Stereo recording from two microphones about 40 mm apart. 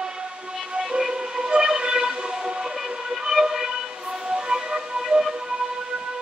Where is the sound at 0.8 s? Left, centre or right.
Centre.